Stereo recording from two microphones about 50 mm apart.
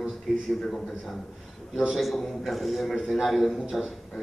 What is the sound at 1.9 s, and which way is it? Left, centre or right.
A man's voice, centre.